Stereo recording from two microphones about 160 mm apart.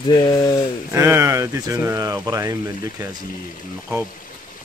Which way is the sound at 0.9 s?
15° right (ahead or behind).